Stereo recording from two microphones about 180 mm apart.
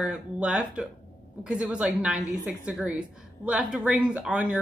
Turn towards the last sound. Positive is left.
turn(degrees=-5)  # may be behind; listen again after turning